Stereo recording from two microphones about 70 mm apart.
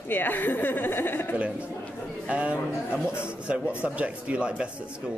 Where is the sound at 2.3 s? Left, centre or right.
Centre.